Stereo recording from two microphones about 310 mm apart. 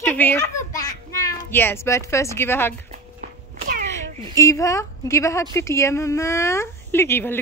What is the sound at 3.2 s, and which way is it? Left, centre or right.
Cat, right.